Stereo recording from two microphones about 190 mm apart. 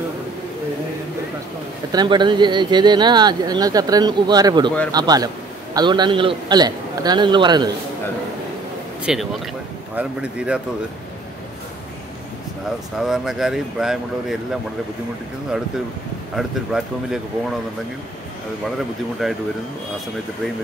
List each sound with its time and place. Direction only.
1.9 s speech: 20° right (ahead or behind)
9.0 s speech: 5° right (ahead or behind)
13.0 s speech: centre (ahead or behind)
16.3 s speech: centre (ahead or behind)
19.2 s speech: centre (ahead or behind)